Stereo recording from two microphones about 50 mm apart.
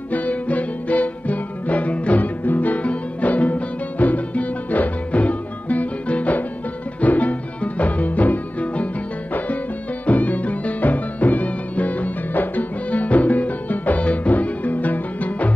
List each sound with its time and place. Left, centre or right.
0.1 s music: left
10.0 s music: left